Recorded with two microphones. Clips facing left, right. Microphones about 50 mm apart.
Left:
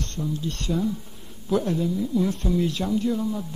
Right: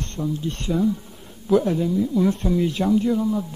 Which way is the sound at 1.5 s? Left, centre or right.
Centre.